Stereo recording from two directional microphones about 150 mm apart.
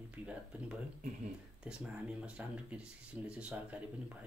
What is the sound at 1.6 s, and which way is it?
Speech, 5° right (ahead or behind).